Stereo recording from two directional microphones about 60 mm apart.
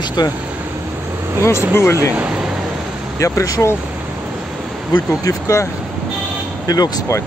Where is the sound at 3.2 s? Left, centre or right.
Left.